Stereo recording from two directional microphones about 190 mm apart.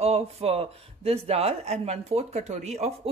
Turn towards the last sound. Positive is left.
turn(degrees=-35)  # may be behind; listen again after turning